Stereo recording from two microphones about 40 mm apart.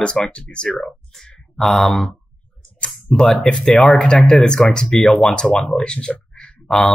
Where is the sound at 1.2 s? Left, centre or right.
Centre.